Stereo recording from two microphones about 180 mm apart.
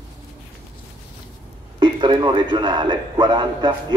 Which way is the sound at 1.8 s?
25° right (ahead or behind).